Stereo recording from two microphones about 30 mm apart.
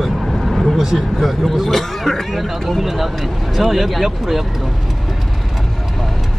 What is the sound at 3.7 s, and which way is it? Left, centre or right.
Speech, centre.